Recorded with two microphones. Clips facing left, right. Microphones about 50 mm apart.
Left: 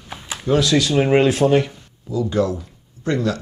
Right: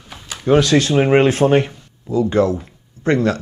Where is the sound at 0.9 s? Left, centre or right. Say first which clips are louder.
Right 2 dB; right.